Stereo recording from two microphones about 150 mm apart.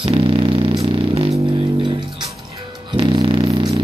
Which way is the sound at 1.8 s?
30° right (ahead or behind).